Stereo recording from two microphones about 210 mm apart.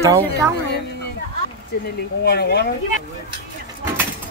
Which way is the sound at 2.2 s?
50° left (ahead or behind).